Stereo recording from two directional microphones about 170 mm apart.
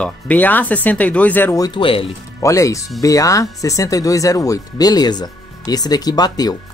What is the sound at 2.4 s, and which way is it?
Speech, 20° left (ahead or behind).